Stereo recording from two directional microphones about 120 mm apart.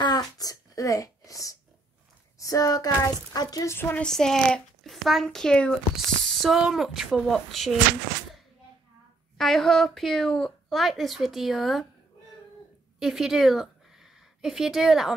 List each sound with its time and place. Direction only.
0.0 s a sound: 35° left (ahead or behind)
2.3 s a woman's voice: 30° left (ahead or behind)
3.7 s speech: 20° left (ahead or behind)
4.0 s a woman's voice: 5° left (ahead or behind)
9.4 s a woman's voice: centre (ahead or behind)
13.0 s speech: 5° right (ahead or behind)